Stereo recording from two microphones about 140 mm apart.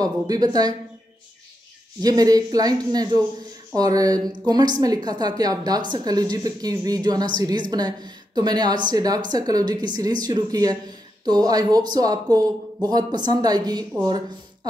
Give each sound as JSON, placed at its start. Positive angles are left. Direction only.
{"t": 0.0, "sound": "speech", "side_deg": -25}
{"t": 2.0, "sound": "speech", "side_deg": -25}